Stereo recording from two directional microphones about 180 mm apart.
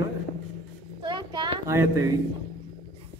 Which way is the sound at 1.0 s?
25° right (ahead or behind).